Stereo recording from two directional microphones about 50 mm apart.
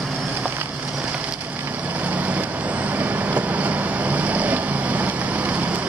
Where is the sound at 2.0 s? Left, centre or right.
Right.